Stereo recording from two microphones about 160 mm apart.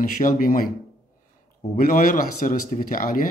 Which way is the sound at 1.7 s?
60° left (ahead or behind).